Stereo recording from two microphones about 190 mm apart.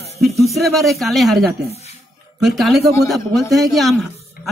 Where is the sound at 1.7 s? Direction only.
35° left (ahead or behind).